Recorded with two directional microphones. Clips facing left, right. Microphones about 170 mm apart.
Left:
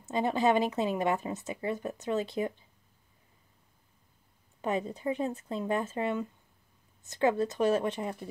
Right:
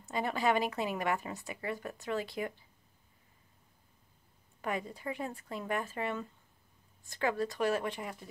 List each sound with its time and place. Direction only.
0.1 s a woman's voice: 20° left (ahead or behind)
4.6 s a woman's voice: 20° left (ahead or behind)